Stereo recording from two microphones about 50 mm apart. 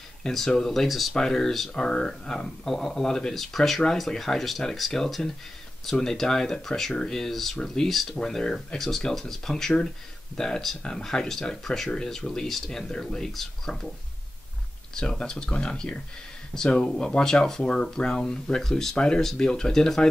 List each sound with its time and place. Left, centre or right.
0.2 s speech: centre
15.0 s speech: centre